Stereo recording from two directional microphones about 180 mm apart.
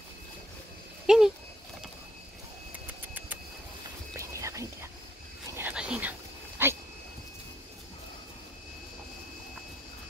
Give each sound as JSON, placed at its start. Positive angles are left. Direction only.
{"t": 1.0, "sound": "speech", "side_deg": -5}
{"t": 4.2, "sound": "whispering", "side_deg": -15}
{"t": 6.6, "sound": "a sound", "side_deg": -10}